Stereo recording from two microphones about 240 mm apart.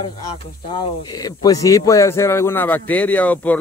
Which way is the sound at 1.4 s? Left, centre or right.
Centre.